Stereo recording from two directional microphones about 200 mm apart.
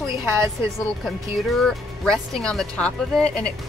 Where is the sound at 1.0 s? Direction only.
Centre (ahead or behind).